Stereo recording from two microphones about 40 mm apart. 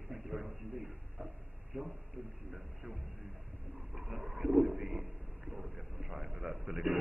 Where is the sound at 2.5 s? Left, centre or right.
Centre.